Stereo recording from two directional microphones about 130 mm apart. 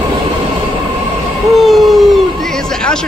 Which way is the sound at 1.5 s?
Centre (ahead or behind).